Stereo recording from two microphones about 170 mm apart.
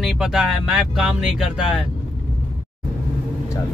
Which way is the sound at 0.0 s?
5° right (ahead or behind).